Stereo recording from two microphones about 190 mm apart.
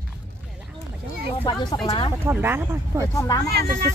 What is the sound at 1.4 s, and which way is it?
Speech, 25° left (ahead or behind).